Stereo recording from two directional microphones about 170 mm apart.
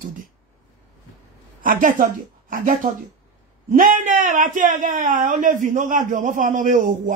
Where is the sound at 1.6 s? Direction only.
50° right (ahead or behind).